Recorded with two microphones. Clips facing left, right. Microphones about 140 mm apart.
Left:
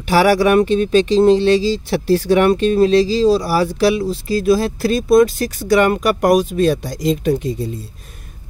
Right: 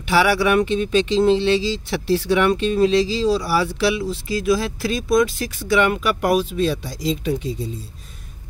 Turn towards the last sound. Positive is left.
turn(degrees=55)  # may be behind; listen again after turning